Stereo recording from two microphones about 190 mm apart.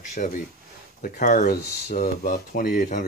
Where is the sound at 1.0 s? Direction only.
40° left (ahead or behind).